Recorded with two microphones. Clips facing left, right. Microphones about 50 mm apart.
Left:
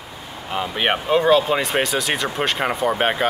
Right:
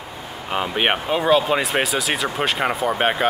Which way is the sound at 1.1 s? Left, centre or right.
Centre.